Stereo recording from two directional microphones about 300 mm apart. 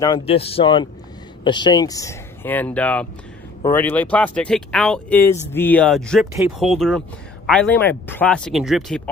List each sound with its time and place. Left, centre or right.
0.0 s speech: centre